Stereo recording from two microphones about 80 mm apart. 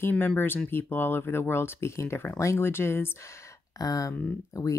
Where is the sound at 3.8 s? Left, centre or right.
Left.